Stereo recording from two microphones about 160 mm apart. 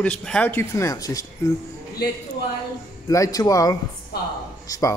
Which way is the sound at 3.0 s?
20° left (ahead or behind).